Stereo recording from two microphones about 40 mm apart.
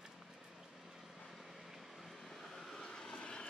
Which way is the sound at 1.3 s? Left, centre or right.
Centre.